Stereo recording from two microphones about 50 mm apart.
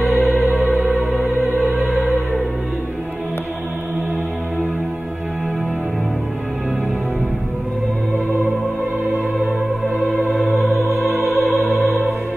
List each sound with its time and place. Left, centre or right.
0.2 s music: right
10.8 s opera: right
11.1 s opera: centre